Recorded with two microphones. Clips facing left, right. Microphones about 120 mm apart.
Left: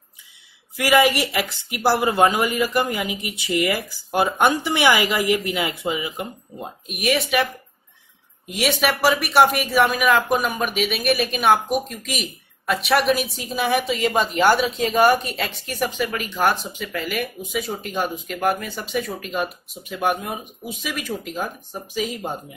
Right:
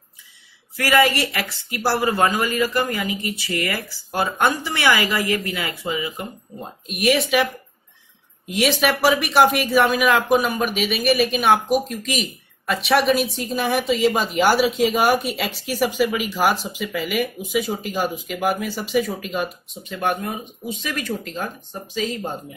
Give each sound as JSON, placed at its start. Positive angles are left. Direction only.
{"t": 0.7, "sound": "speech", "side_deg": 15}
{"t": 6.9, "sound": "speech", "side_deg": 0}
{"t": 8.5, "sound": "speech", "side_deg": 0}